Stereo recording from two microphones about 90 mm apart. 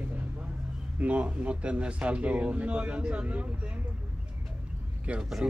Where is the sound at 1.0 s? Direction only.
15° right (ahead or behind).